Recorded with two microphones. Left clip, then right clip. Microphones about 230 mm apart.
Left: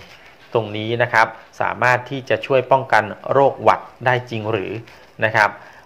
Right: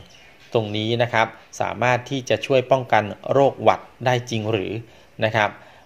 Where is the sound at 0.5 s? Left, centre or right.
Right.